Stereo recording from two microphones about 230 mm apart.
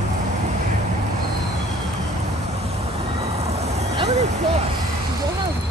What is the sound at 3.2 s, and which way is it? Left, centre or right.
Vehicle, right.